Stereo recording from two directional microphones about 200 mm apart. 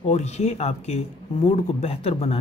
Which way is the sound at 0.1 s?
35° left (ahead or behind).